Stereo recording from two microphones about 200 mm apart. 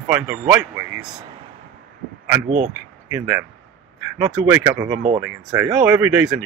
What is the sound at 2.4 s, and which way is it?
Speech, 35° right (ahead or behind).